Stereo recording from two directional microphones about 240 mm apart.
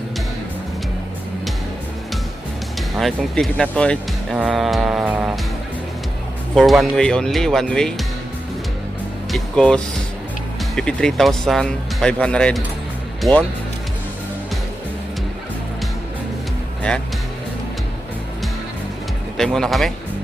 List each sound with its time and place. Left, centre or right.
3.0 s speech: centre
6.5 s speech: centre
9.3 s speech: centre
10.8 s speech: centre
19.3 s speech: centre